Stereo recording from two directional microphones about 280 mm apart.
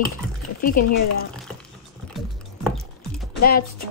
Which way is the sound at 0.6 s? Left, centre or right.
Left.